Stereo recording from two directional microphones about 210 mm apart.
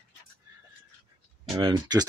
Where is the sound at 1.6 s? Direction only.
20° right (ahead or behind).